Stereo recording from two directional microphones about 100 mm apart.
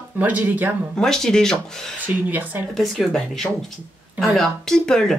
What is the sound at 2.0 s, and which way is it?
Speech, 15° right (ahead or behind).